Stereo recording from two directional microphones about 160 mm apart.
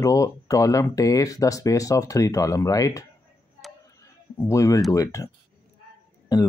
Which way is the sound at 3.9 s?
20° left (ahead or behind).